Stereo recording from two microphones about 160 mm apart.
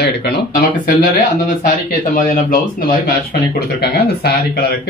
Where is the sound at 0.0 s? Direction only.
90° left.